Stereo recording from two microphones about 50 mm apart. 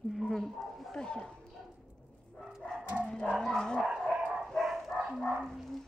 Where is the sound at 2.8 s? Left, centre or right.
Right.